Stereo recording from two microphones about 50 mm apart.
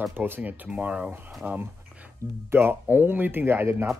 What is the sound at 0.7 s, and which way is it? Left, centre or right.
Speech, right.